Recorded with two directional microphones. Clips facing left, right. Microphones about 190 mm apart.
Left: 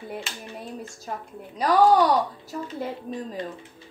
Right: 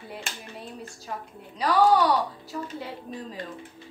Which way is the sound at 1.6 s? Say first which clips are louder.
Left 2 dB; 45° left (ahead or behind).